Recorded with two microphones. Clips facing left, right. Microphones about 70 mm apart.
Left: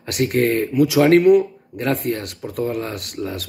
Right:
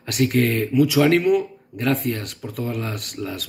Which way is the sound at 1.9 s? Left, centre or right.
Left.